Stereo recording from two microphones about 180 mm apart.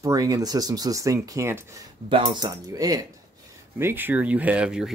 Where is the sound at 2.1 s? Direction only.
30° right (ahead or behind); by 4.9 s 5° right (ahead or behind).